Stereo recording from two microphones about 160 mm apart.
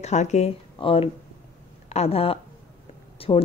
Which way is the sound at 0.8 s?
35° left (ahead or behind).